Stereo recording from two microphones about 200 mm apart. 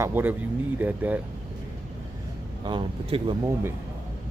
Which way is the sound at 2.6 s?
25° right (ahead or behind).